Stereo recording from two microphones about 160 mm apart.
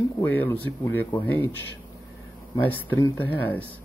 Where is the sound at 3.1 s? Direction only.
10° left (ahead or behind).